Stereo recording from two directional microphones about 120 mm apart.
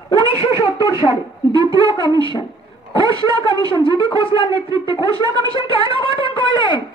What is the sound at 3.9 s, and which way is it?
Speech, 45° left (ahead or behind).